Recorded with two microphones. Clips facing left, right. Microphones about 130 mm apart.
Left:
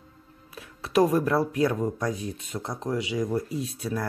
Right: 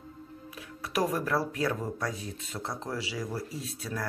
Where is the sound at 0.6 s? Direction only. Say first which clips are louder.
Left 8 dB; 25° left (ahead or behind).